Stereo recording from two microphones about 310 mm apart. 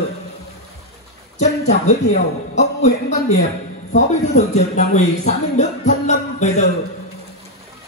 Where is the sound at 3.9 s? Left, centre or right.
Left.